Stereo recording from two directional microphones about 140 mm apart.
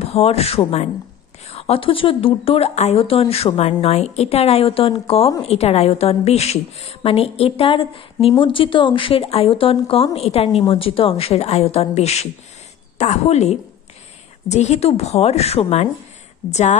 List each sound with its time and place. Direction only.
0.0 s a woman's voice: 45° left (ahead or behind)